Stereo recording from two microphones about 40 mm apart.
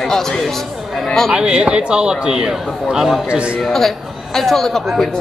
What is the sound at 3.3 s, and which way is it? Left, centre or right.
Speech, right.